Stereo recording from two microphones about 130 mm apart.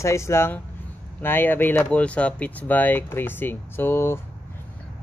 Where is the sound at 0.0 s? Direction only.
20° left (ahead or behind).